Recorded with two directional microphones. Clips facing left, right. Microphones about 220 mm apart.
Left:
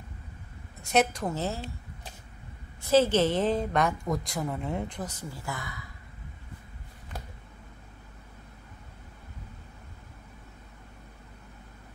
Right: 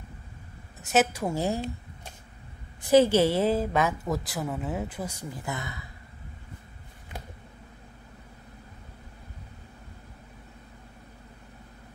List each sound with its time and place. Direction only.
0.9 s a woman's voice: 10° right (ahead or behind)
2.8 s a woman's voice: 15° right (ahead or behind)